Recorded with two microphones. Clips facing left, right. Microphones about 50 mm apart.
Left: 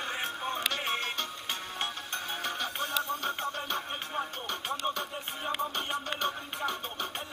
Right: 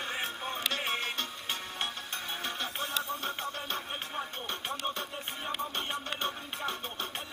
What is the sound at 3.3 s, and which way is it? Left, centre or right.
Music, left.